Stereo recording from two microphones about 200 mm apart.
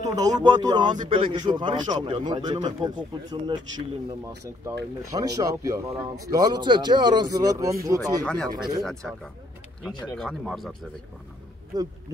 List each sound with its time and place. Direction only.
0.0 s a man's voice: 20° right (ahead or behind)
5.1 s speech: 20° right (ahead or behind)
8.2 s speech: 5° left (ahead or behind)
8.5 s a man's voice: 20° right (ahead or behind)
8.8 s speech: 5° left (ahead or behind)
11.7 s a man's voice: 20° right (ahead or behind)